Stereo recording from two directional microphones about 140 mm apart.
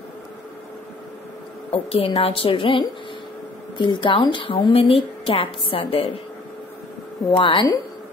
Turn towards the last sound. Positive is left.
turn(degrees=30)  # may be behind; listen again after turning